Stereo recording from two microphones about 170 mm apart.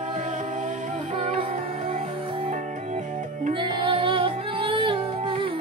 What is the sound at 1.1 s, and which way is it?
Music, 35° right (ahead or behind).